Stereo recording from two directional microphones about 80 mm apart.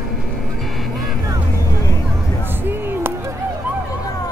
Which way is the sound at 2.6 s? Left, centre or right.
Right.